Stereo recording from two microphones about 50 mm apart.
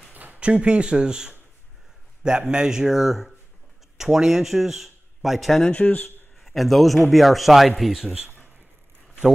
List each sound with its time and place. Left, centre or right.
0.1 s a sound: right
0.4 s a man's voice: right; by 5.6 s centre
5.6 s speech: left
6.0 s a man's voice: centre